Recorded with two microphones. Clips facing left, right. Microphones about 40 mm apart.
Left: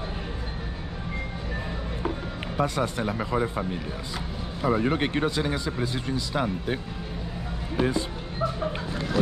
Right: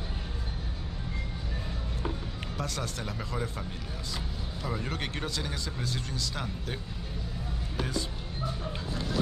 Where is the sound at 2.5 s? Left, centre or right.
Left.